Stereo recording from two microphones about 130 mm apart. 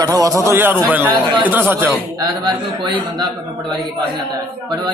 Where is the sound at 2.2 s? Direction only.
35° right (ahead or behind).